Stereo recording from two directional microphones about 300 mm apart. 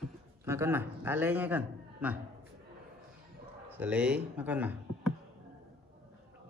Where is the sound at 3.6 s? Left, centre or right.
Centre.